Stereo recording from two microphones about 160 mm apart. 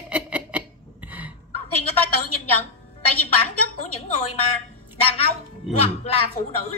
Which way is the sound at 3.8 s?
45° left (ahead or behind).